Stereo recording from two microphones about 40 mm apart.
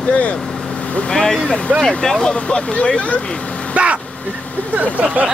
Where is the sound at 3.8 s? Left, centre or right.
Right.